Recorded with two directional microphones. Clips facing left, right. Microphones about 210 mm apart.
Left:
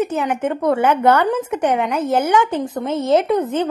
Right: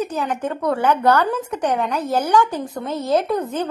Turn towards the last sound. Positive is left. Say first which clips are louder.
# left 4 dB
turn(degrees=25)  # may be behind; listen again after turning